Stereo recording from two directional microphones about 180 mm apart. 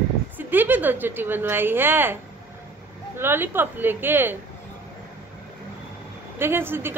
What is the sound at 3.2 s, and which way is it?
A woman's voice, 10° right (ahead or behind).